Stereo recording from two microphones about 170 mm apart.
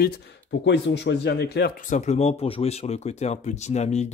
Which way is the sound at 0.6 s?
90° left.